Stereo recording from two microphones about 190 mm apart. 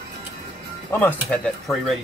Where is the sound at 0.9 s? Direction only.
10° left (ahead or behind).